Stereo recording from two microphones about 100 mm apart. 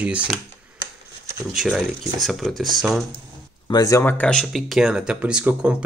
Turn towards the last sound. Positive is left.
turn(degrees=-10)  # may be behind; listen again after turning